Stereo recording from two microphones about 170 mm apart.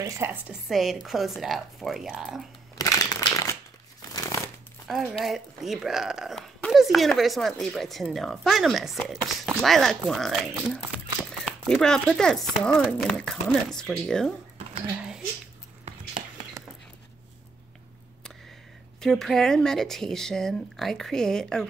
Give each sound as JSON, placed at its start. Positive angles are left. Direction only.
{"t": 0.0, "sound": "speech", "side_deg": -15}
{"t": 0.7, "sound": "speech", "side_deg": 0}
{"t": 2.8, "sound": "a sound", "side_deg": 20}
{"t": 4.8, "sound": "speech", "side_deg": 0}
{"t": 15.8, "sound": "a sound", "side_deg": -45}
{"t": 18.9, "sound": "speech", "side_deg": 5}